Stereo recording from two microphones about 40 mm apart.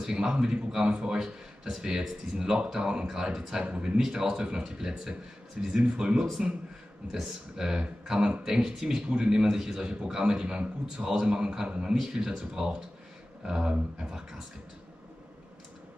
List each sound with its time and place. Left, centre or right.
0.0 s a man's voice: centre
1.1 s a man's voice: centre